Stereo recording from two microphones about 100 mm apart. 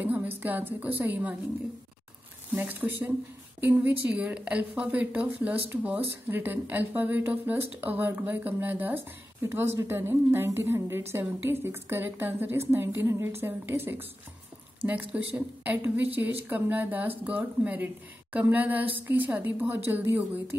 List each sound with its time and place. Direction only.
0.0 s a woman's voice: 15° right (ahead or behind)
2.5 s a woman's voice: 20° right (ahead or behind)